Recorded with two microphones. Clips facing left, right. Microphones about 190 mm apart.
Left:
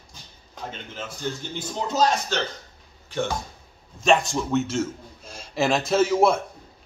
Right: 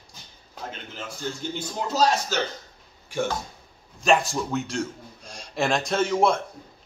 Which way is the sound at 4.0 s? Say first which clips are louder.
Left 1 dB; centre (ahead or behind).